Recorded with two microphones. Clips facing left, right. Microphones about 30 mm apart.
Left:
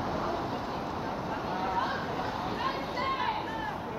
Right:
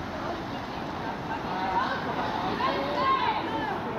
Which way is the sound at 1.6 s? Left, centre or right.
Right.